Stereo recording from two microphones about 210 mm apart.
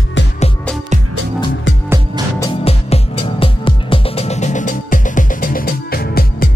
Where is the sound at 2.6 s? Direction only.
30° left (ahead or behind); by 6.4 s 45° left (ahead or behind).